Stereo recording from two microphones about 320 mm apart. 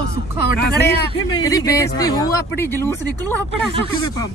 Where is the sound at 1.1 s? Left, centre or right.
Centre.